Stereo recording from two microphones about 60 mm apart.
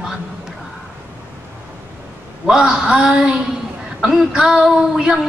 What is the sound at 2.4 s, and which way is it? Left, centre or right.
Speech, centre.